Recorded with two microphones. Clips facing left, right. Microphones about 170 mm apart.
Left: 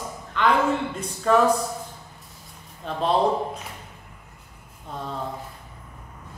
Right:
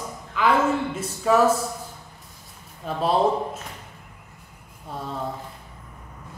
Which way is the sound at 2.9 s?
5° right (ahead or behind).